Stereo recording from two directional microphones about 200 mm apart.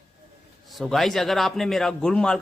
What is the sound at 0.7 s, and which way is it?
A man's voice, centre (ahead or behind).